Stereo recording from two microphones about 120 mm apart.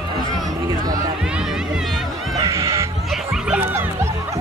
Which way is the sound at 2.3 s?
25° right (ahead or behind).